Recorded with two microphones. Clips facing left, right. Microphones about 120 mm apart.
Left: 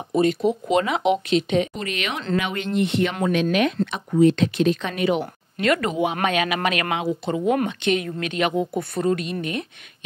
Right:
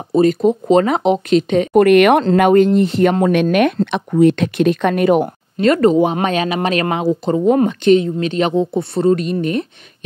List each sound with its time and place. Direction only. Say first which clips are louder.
0.1 s speech: right 7 dB; 40° right (ahead or behind)
1.7 s speech: right 19 dB; 60° right (ahead or behind)
2.3 s speech: right 13 dB; 45° right (ahead or behind)
5.6 s speech: right 9 dB; 35° right (ahead or behind)